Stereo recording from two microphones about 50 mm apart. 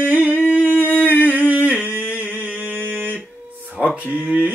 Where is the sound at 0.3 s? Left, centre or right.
Left.